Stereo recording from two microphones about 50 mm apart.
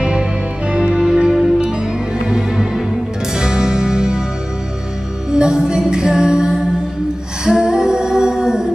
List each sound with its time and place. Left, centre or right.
0.0 s music: centre
5.3 s music: centre
7.4 s humming: centre